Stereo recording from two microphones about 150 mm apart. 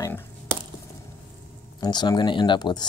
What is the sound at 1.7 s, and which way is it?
Speech, 30° left (ahead or behind).